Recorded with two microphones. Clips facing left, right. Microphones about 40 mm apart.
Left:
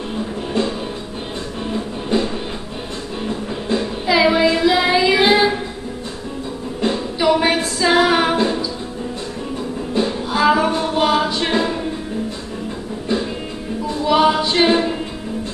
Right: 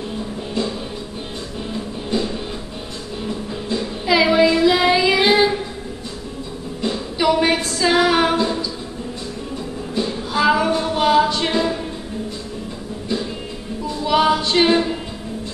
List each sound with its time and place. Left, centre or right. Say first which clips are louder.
0.6 s music: left 3 dB; left
4.0 s child singing: even; centre
7.2 s a sound: left 1 dB; centre
10.3 s a sound: left 1 dB; centre
10.6 s music: left 1 dB; centre
14.0 s a capella: left 2 dB; centre